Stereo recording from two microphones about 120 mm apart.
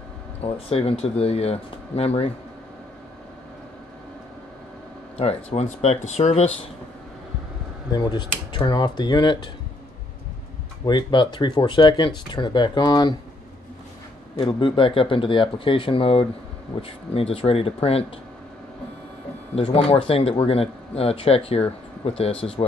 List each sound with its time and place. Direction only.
0.4 s speech: 55° left (ahead or behind)
5.1 s speech: 60° left (ahead or behind)
7.9 s speech: 35° left (ahead or behind)
10.9 s speech: 40° left (ahead or behind)
14.3 s speech: 45° left (ahead or behind)
19.5 s speech: 55° left (ahead or behind)